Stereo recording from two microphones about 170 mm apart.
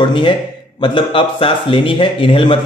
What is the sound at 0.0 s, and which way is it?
Speech, 30° left (ahead or behind).